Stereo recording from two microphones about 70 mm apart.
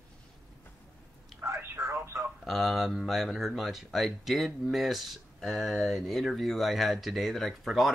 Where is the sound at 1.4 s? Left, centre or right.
Right.